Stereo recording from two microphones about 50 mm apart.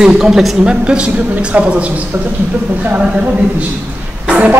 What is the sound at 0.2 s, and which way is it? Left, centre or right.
Speech, centre.